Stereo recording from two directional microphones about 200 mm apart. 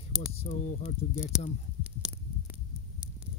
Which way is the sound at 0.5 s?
35° left (ahead or behind).